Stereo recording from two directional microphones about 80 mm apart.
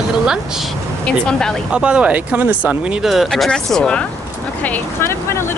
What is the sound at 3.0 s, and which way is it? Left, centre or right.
Speech, centre.